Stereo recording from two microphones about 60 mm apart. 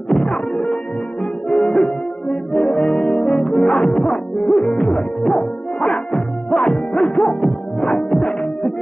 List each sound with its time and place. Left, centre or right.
0.1 s music: centre
2.5 s brass instrument: centre
2.9 s music: centre